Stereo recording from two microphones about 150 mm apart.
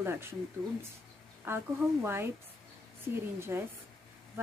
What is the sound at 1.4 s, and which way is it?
Speech, 15° right (ahead or behind).